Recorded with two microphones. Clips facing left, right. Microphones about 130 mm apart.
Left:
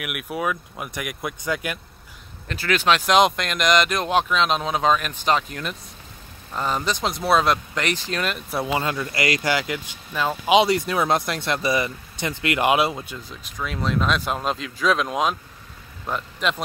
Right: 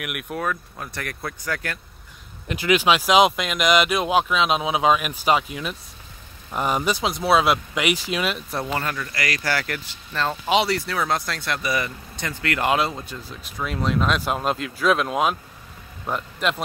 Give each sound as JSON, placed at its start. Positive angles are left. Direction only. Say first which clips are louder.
{"t": 0.0, "sound": "speech", "louder": "left 1 dB", "side_deg": 0}
{"t": 2.4, "sound": "speech", "louder": "right 2 dB", "side_deg": -15}
{"t": 8.9, "sound": "speech", "louder": "left 4 dB", "side_deg": 25}
{"t": 13.6, "sound": "speech", "louder": "right 1 dB", "side_deg": -5}